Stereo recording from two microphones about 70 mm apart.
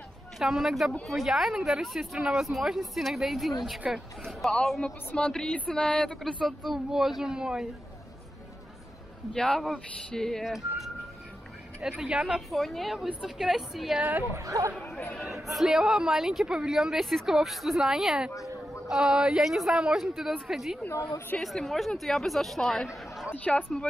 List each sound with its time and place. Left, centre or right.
0.4 s speech: centre
9.3 s speech: centre
11.8 s speech: centre
12.4 s speech: centre
14.3 s speech: right
14.9 s speech: left
15.1 s speech: centre
23.3 s speech: left